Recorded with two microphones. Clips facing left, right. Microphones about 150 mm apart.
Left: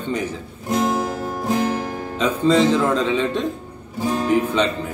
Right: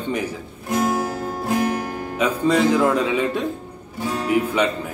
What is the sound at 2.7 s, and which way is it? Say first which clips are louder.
Speech: even; 10° right (ahead or behind).